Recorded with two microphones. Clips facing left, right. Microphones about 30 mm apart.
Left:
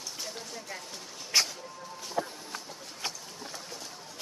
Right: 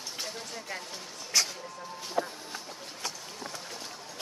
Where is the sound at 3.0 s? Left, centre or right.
Left.